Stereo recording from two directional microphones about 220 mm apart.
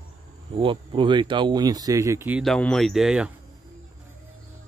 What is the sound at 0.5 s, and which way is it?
Speech, 25° right (ahead or behind).